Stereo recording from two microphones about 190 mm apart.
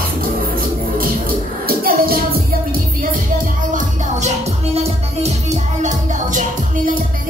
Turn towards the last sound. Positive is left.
turn(degrees=-35)  # may be behind; listen again after turning